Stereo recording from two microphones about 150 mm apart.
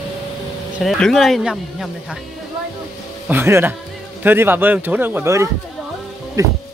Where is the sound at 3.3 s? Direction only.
15° right (ahead or behind).